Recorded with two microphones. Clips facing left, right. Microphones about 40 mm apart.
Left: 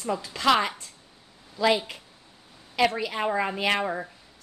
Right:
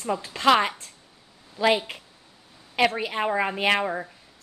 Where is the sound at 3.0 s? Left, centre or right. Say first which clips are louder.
Right 1 dB; centre.